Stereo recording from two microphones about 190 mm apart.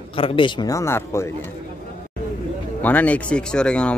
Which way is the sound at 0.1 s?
30° left (ahead or behind).